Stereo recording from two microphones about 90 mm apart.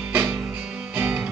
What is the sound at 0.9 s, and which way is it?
Music, 20° right (ahead or behind).